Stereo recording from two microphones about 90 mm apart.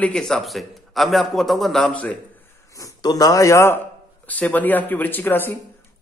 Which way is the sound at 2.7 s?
40° left (ahead or behind).